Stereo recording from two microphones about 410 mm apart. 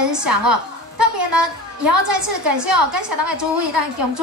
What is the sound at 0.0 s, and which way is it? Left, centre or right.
A woman's voice, right.